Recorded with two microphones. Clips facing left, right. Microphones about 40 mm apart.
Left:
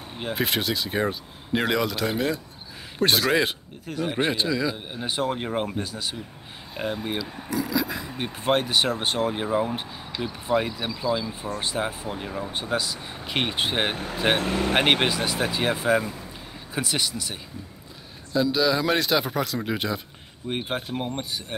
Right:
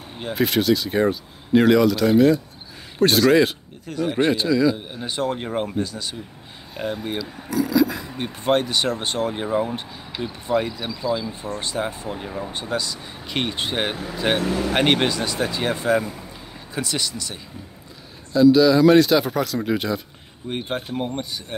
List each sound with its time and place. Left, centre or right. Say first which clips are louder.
0.2 s speech: right 5 dB; centre
12.5 s speech: even; centre
14.3 s speech: right 3 dB; left
14.8 s speech: right 2 dB; centre